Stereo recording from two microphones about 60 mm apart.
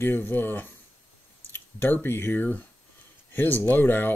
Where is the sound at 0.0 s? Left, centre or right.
Left.